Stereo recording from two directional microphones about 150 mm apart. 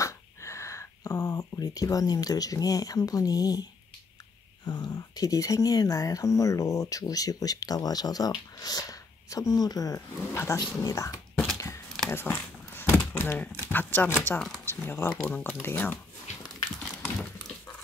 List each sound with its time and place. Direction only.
0.0 s dog: 20° left (ahead or behind)
1.6 s speech: 25° left (ahead or behind)
4.6 s speech: 30° left (ahead or behind)
11.5 s a sound: 20° left (ahead or behind)
13.7 s speech: 15° left (ahead or behind)